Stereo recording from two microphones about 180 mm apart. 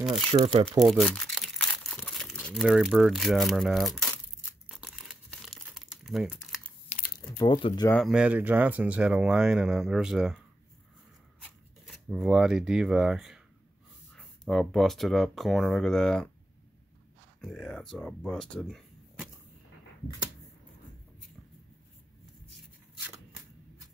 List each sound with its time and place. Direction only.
0.3 s speech: 35° right (ahead or behind)
0.7 s crumpling: centre (ahead or behind)
7.2 s speech: 25° left (ahead or behind)
7.9 s speech: centre (ahead or behind)
11.4 s speech: 5° right (ahead or behind)
17.4 s speech: 5° left (ahead or behind)